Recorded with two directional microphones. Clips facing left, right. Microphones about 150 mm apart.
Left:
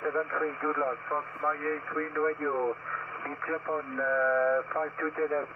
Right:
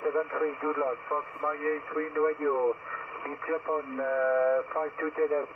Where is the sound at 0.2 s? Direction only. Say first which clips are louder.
Right 2 dB; 20° right (ahead or behind).